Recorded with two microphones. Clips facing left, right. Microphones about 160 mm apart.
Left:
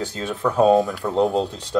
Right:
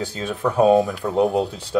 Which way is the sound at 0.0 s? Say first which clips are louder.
Even; 15° right (ahead or behind).